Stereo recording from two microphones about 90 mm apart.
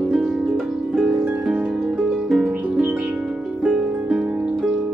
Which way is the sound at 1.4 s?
10° right (ahead or behind).